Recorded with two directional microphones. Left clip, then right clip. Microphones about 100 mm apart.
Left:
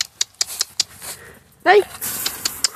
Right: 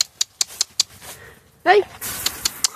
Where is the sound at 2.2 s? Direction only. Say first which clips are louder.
Even; centre (ahead or behind).